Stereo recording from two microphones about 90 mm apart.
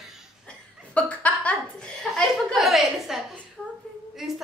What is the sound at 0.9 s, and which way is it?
Laughter, 15° left (ahead or behind).